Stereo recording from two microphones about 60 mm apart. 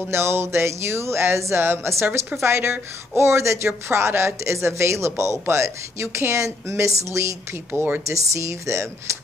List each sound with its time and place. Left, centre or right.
0.1 s speech: right